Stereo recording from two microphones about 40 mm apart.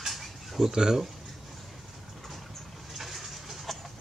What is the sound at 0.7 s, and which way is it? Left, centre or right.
Speech, centre.